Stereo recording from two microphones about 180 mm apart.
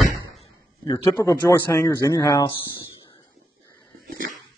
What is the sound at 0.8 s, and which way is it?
Speech, 25° left (ahead or behind).